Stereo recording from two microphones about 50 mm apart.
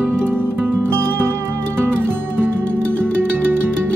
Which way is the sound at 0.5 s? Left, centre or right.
Right.